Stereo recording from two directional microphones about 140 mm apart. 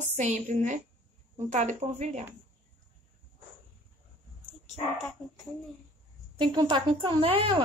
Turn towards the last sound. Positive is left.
turn(degrees=-40)  # may be behind; listen again after turning